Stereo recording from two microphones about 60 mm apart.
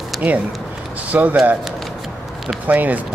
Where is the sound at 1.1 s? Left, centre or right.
Right.